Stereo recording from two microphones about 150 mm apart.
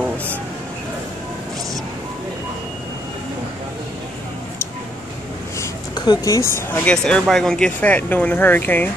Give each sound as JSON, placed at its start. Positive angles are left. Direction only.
{"t": 5.9, "sound": "a woman's voice", "side_deg": 25}
{"t": 6.9, "sound": "speech", "side_deg": 5}